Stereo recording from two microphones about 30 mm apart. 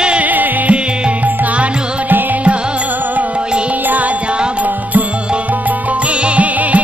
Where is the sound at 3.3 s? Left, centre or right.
Right.